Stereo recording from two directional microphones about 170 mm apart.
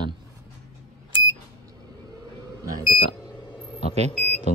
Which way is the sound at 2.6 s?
20° right (ahead or behind).